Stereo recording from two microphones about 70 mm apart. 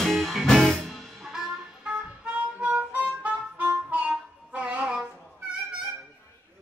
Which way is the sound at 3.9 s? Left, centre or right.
Right.